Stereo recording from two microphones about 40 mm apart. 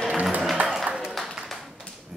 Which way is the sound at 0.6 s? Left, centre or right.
Right.